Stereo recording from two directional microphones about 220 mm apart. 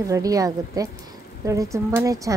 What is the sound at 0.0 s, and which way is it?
Speech, 15° right (ahead or behind).